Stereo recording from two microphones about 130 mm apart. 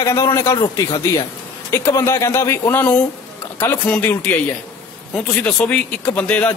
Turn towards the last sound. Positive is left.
turn(degrees=10)  # may be behind; listen again after turning